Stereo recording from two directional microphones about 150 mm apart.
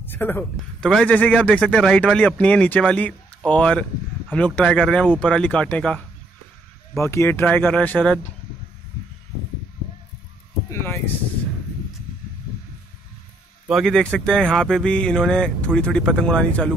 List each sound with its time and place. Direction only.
0.0 s speech: 15° left (ahead or behind)
7.0 s speech: 20° left (ahead or behind)
10.7 s speech: 15° left (ahead or behind)
13.7 s speech: centre (ahead or behind)